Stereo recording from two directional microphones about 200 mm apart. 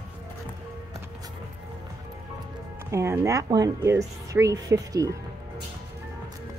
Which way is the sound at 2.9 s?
15° right (ahead or behind).